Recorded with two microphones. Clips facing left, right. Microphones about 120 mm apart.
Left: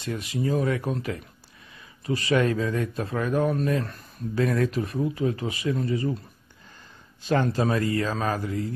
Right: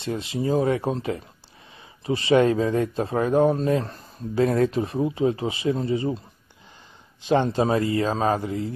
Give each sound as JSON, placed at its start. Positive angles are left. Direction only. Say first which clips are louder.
{"t": 0.0, "sound": "speech", "louder": "right 2 dB", "side_deg": -25}
{"t": 7.2, "sound": "speech", "louder": "right 3 dB", "side_deg": -25}